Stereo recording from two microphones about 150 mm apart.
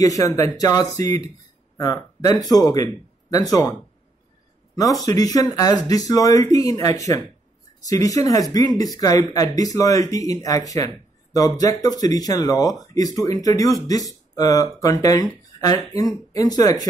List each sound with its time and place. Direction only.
0.0 s speech: 25° left (ahead or behind)
5.0 s speech: 25° left (ahead or behind)